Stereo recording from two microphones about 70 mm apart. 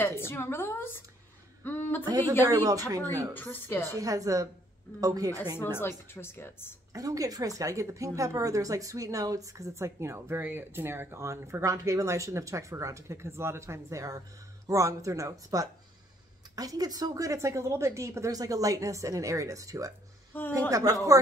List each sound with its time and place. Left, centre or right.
0.3 s a woman's voice: left
1.6 s a sound: left
2.0 s a woman's voice: right
3.5 s a woman's voice: left
3.9 s a woman's voice: right
5.8 s a woman's voice: left
6.9 s a woman's voice: right
18.3 s a woman's voice: right
20.3 s a woman's voice: left
20.7 s a woman's voice: right